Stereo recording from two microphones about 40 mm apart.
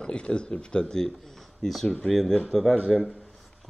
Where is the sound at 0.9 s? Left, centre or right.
Centre.